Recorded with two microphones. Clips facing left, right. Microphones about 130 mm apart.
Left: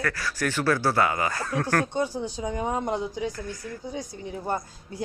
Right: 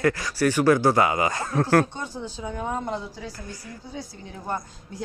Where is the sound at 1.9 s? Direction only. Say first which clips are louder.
Left 6 dB; 10° left (ahead or behind).